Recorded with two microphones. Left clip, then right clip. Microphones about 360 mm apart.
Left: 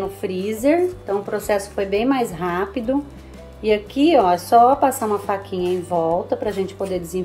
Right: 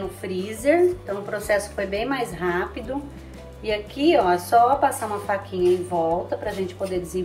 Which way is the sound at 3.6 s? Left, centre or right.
Left.